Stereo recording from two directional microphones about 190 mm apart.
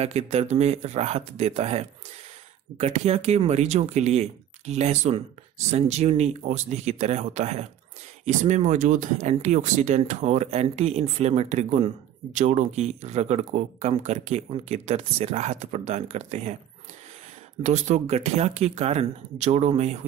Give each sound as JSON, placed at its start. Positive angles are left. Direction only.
{"t": 0.0, "sound": "speech", "side_deg": -35}
{"t": 17.6, "sound": "speech", "side_deg": -35}